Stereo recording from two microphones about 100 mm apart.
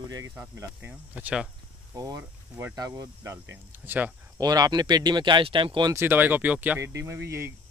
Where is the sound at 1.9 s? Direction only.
40° right (ahead or behind).